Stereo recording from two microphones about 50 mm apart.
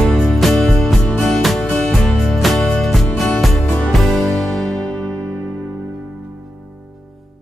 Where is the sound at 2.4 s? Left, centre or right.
Centre.